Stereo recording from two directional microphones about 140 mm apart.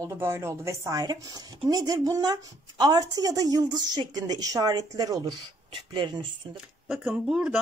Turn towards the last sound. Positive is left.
turn(degrees=-5)  # may be behind; listen again after turning